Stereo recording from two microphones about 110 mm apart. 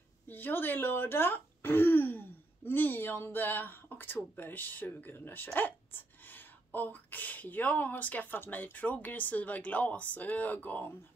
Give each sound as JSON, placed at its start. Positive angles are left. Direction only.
{"t": 0.3, "sound": "speech", "side_deg": 20}